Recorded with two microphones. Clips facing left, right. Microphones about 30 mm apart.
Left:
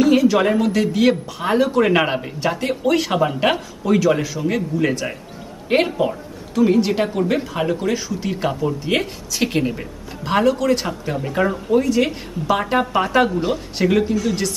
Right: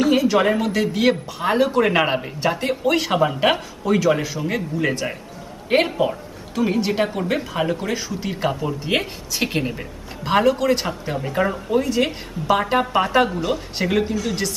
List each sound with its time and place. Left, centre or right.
0.0 s a woman's voice: centre